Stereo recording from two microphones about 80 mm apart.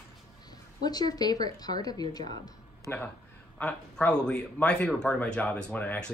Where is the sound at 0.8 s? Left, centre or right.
Left.